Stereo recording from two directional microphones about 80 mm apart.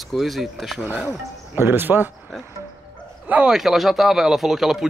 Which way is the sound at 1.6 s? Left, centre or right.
Right.